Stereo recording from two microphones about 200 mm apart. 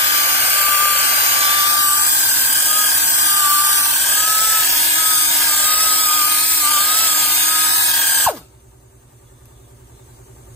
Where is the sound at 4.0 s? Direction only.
5° left (ahead or behind).